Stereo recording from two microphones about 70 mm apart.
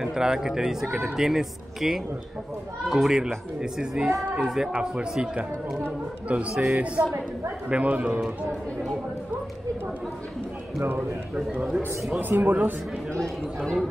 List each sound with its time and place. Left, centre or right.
0.0 s a man's voice: centre
10.8 s a man's voice: right
13.6 s speech: centre